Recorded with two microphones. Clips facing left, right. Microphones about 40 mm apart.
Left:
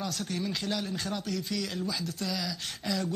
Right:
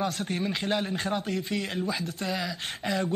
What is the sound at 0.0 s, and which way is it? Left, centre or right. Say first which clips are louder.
A man's voice: right 4 dB; right.